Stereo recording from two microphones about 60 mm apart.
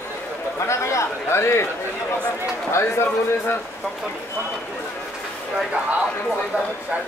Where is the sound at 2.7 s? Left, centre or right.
Left.